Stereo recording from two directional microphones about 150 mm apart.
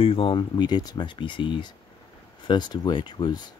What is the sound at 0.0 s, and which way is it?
Speech, 35° left (ahead or behind).